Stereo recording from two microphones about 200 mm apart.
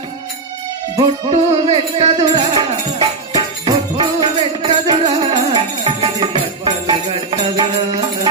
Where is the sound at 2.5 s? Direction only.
25° right (ahead or behind).